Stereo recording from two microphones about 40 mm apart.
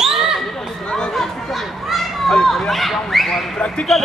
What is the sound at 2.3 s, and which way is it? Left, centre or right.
Speech, centre.